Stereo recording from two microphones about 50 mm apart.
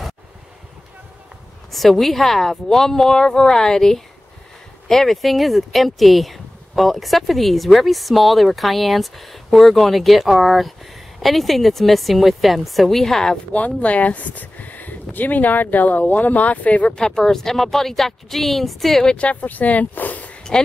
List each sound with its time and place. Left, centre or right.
1.7 s speech: centre
13.5 s speech: left
16.9 s speech: centre
19.0 s speech: left